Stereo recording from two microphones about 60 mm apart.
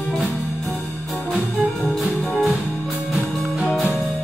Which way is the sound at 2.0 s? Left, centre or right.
Centre.